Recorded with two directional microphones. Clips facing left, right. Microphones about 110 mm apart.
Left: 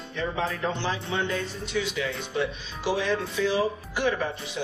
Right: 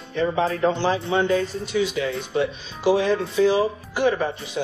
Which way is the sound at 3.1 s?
40° right (ahead or behind).